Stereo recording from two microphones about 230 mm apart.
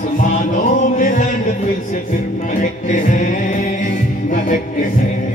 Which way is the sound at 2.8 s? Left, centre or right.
Left.